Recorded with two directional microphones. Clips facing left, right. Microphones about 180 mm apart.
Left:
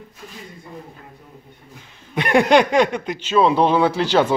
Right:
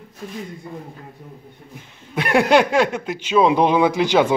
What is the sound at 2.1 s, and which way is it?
Speech, 5° right (ahead or behind).